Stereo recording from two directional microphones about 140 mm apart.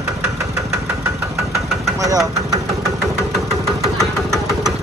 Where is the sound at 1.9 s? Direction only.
25° right (ahead or behind).